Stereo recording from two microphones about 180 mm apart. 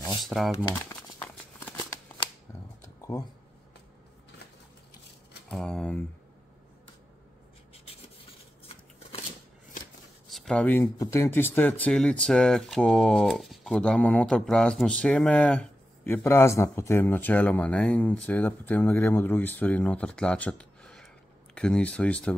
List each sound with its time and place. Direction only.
0.2 s speech: centre (ahead or behind)
1.2 s a sound: 10° left (ahead or behind)
5.5 s speech: 5° left (ahead or behind)
10.2 s speech: centre (ahead or behind)